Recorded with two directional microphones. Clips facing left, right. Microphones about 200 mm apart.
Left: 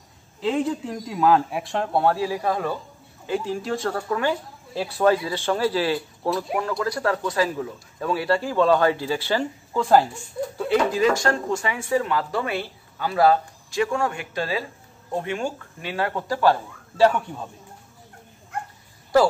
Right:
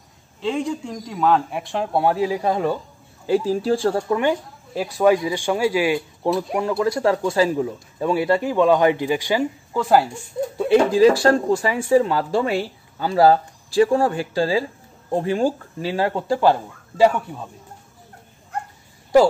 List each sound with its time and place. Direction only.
0.4 s a man's voice: centre (ahead or behind)
2.0 s speech: 15° right (ahead or behind)
3.3 s speech: 35° right (ahead or behind); by 6.3 s 15° right (ahead or behind)
6.8 s speech: 25° right (ahead or behind); by 10.0 s 5° right (ahead or behind)
10.6 s speech: 25° right (ahead or behind); by 17.5 s 5° right (ahead or behind)